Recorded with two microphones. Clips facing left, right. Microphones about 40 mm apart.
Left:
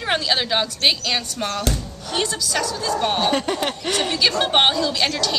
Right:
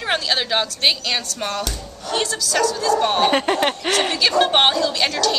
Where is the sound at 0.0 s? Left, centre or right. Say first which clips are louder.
Even; centre.